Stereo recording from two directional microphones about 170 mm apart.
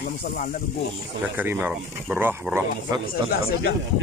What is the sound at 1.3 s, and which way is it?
Speech, 10° right (ahead or behind).